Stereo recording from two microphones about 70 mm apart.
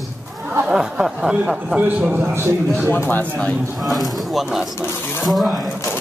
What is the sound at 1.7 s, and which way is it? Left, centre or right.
Speech, right.